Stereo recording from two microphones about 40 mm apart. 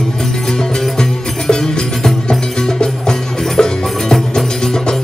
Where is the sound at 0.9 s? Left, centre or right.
Centre.